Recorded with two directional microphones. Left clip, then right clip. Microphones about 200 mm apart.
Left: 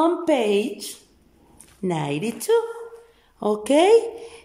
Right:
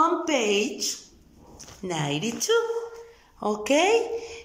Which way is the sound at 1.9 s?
25° left (ahead or behind).